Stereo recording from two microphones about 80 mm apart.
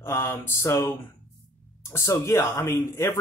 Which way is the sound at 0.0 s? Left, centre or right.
Left.